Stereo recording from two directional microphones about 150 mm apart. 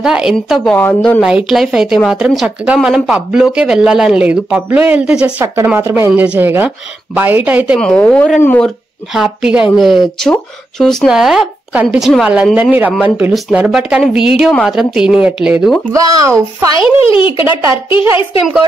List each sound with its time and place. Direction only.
0.0 s speech: 5° right (ahead or behind)
0.7 s a woman's voice: 10° left (ahead or behind)
1.2 s speech: 5° right (ahead or behind)
7.8 s speech: 5° left (ahead or behind)
15.9 s speech: 25° right (ahead or behind)
16.7 s speech: 35° left (ahead or behind)
17.4 s speech: 15° right (ahead or behind)